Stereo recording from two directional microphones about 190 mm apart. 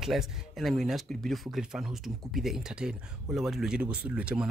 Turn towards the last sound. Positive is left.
turn(degrees=-5)  # may be behind; listen again after turning